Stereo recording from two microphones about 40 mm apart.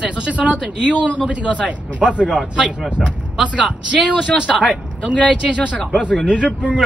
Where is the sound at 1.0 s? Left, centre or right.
Left.